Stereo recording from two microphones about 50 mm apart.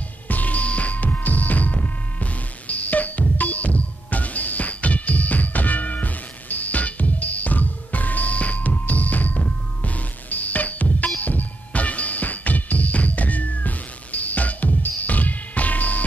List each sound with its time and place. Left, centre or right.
0.3 s music: left